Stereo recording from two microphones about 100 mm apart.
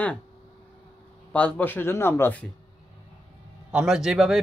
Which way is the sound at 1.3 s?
15° left (ahead or behind).